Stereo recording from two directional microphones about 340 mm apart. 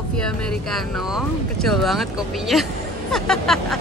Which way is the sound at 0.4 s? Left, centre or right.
Centre.